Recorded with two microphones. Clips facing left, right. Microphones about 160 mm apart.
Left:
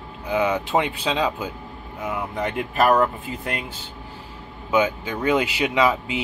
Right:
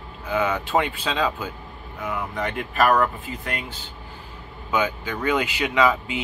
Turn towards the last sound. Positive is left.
turn(degrees=20)  # may be behind; listen again after turning